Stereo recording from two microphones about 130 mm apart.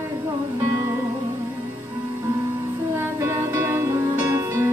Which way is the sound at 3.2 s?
20° right (ahead or behind).